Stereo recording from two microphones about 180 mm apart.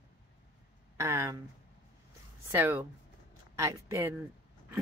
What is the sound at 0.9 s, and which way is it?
Speech, 15° right (ahead or behind).